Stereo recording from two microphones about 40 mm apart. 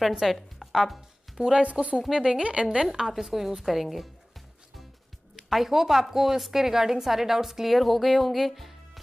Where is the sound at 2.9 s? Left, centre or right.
Centre.